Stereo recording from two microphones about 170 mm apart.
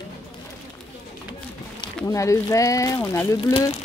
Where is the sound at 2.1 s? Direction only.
20° left (ahead or behind).